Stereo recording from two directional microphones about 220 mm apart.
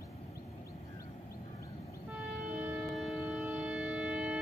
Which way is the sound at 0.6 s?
15° left (ahead or behind).